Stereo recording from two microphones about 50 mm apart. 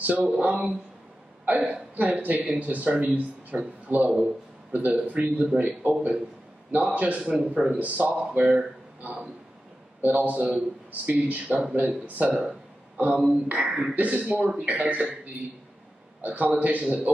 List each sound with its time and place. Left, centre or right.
0.0 s a man's voice: right
7.2 s a man's voice: centre; by 12.4 s right
12.4 s a sound: right
13.3 s speech: right
13.7 s speech: centre
13.9 s a man's voice: right
16.2 s a man's voice: right